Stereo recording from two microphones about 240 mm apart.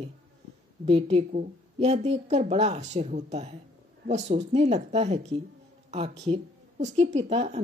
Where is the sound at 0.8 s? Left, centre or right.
Right.